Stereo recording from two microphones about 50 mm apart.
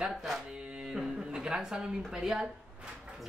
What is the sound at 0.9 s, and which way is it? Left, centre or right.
A man's voice, centre.